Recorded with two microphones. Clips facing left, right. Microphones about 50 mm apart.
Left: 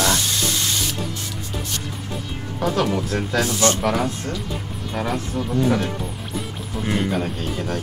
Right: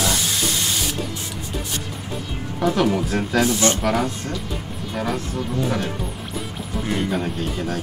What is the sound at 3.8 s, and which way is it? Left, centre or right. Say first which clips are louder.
Speech: even; centre.